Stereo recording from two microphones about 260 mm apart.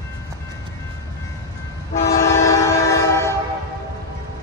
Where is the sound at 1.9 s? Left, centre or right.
Left.